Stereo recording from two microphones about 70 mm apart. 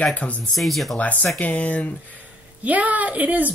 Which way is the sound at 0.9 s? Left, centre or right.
Centre.